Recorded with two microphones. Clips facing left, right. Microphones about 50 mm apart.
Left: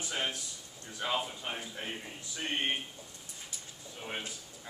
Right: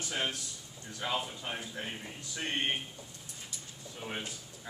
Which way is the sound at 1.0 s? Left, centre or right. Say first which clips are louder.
Left 1 dB; centre.